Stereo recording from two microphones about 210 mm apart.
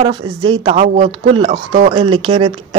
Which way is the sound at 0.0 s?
25° right (ahead or behind).